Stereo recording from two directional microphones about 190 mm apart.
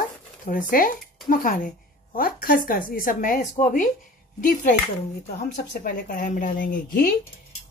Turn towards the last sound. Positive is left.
turn(degrees=45)  # may be behind; listen again after turning